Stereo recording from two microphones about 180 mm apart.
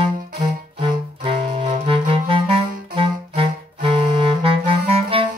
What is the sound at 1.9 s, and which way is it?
Clarinet, 30° right (ahead or behind).